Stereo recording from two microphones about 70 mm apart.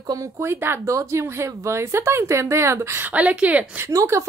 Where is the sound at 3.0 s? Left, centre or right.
Centre.